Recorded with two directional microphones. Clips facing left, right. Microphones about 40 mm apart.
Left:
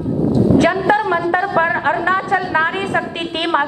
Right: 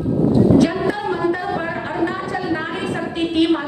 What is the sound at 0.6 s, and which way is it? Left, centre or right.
Speech, left.